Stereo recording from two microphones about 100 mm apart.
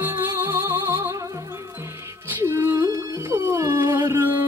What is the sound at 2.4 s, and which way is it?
Music, 25° right (ahead or behind).